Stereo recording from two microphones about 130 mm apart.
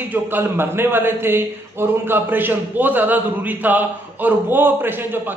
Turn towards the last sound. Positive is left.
turn(degrees=-15)  # may be behind; listen again after turning